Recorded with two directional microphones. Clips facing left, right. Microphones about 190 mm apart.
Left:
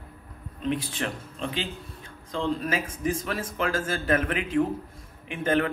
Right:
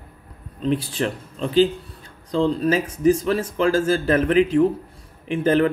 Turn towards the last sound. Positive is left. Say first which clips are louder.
# right 7 dB
turn(degrees=-35)  # may be behind; listen again after turning